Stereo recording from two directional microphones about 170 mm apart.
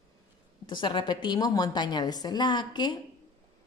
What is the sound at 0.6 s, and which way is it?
A woman's voice, 30° left (ahead or behind).